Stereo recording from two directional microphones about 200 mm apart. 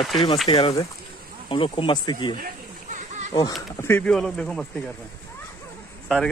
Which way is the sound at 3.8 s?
10° left (ahead or behind).